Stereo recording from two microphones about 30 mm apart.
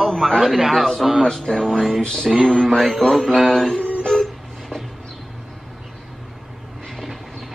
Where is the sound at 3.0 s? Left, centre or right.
Left.